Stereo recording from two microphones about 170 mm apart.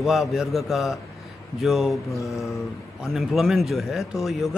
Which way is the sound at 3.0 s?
Centre (ahead or behind).